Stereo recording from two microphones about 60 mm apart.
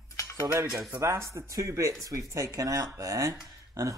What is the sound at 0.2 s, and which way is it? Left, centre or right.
Dishes, left.